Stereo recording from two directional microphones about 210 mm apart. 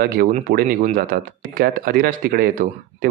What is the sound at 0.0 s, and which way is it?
Speech, 45° right (ahead or behind).